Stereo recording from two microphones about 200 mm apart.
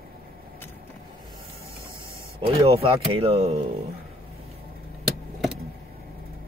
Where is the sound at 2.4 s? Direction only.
25° right (ahead or behind).